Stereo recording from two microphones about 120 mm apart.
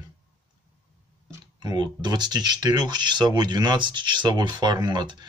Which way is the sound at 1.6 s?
35° right (ahead or behind).